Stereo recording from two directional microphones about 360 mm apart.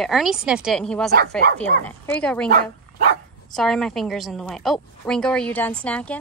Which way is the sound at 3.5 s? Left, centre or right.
Centre.